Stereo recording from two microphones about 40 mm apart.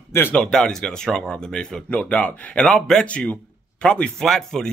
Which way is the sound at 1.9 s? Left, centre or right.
Left.